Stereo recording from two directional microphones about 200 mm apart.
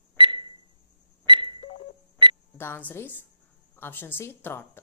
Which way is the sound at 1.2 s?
25° right (ahead or behind).